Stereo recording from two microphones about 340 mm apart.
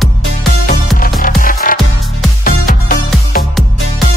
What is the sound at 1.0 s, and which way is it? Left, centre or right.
Music, left.